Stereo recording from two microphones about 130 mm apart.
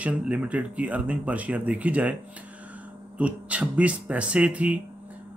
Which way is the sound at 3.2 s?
10° right (ahead or behind).